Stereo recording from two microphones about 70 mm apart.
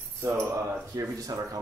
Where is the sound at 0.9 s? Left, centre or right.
Right.